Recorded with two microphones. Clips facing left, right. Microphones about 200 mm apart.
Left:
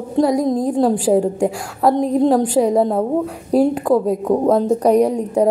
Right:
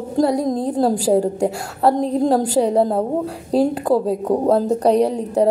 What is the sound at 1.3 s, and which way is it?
A woman's voice, 35° right (ahead or behind).